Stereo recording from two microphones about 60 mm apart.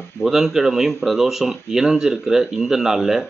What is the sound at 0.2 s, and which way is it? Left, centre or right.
Speech, centre.